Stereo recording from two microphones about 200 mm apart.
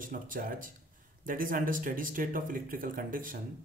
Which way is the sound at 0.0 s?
45° right (ahead or behind).